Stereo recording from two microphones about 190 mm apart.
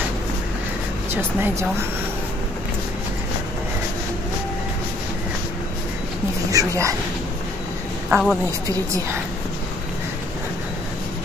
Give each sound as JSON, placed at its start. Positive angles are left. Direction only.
{"t": 1.1, "sound": "speech", "side_deg": -15}
{"t": 6.5, "sound": "speech", "side_deg": -15}
{"t": 8.1, "sound": "a woman's voice", "side_deg": 0}
{"t": 8.5, "sound": "speech", "side_deg": -15}